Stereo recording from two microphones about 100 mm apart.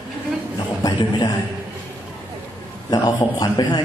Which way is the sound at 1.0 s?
45° left (ahead or behind).